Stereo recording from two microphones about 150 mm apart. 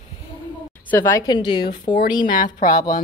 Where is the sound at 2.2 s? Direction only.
60° left (ahead or behind).